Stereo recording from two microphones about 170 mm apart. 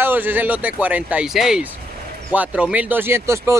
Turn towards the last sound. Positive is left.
turn(degrees=-15)  # may be behind; listen again after turning